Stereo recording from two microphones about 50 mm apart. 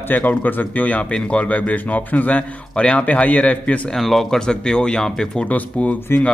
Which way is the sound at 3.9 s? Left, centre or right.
Centre.